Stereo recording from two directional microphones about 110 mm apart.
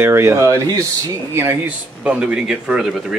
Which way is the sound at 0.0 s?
25° right (ahead or behind).